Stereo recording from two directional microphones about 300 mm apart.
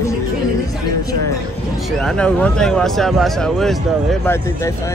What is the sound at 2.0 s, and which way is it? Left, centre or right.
Speech, centre.